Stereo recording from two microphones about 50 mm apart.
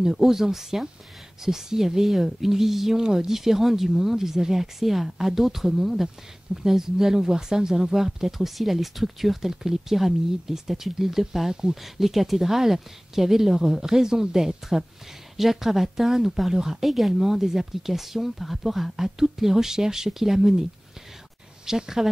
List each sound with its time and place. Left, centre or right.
0.0 s speech: centre
21.6 s speech: centre